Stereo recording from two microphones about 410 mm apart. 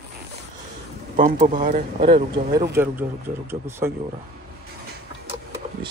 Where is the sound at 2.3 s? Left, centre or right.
Centre.